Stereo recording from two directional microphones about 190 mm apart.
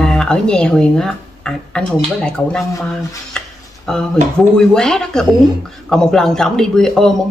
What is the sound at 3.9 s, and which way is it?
Speech, 5° left (ahead or behind).